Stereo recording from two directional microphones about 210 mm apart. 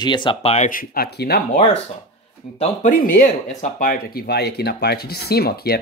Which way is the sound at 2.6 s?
40° left (ahead or behind).